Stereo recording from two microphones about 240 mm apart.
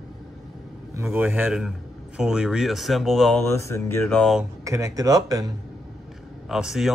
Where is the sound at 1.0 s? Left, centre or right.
Centre.